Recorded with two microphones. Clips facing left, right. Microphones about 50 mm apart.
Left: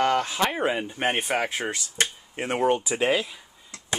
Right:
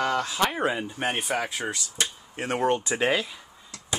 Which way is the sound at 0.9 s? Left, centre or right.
Left.